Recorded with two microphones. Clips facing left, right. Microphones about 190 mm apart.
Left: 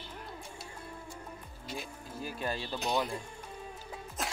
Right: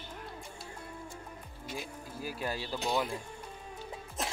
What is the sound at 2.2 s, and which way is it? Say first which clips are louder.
Speech: even; 10° right (ahead or behind).